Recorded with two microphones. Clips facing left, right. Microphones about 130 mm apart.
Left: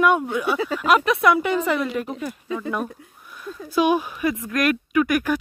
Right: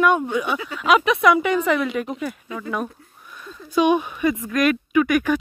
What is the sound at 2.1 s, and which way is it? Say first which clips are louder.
Speech: left 1 dB; 25° left (ahead or behind).